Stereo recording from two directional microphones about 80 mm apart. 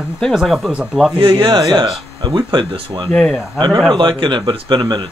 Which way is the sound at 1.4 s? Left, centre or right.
Right.